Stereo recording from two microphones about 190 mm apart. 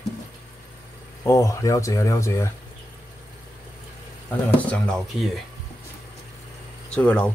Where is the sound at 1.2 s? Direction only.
15° left (ahead or behind).